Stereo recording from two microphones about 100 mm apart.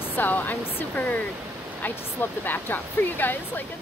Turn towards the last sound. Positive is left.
turn(degrees=20)  # may be behind; listen again after turning